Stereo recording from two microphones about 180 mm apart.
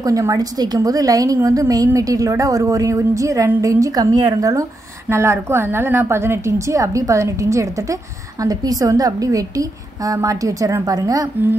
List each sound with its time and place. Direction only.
0.0 s a woman's voice: 20° right (ahead or behind)